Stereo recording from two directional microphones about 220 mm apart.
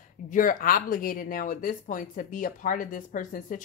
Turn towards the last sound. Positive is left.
turn(degrees=35)  # may be behind; listen again after turning